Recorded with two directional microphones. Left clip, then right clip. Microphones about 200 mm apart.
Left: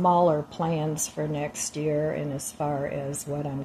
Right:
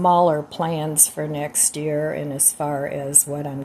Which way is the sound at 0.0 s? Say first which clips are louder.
Right 5 dB; 20° right (ahead or behind).